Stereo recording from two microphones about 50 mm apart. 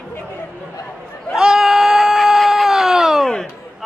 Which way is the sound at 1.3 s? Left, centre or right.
Centre.